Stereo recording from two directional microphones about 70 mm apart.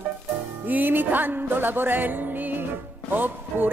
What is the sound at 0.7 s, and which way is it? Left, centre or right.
A woman's voice, right.